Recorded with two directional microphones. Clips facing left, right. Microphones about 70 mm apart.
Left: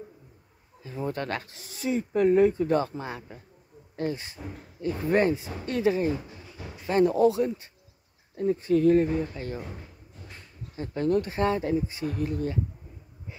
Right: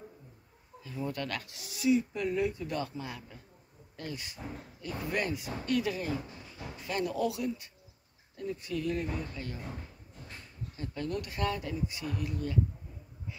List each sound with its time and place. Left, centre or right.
0.8 s speech: left
9.0 s speech: left
9.7 s drawer open or close: centre
10.8 s speech: left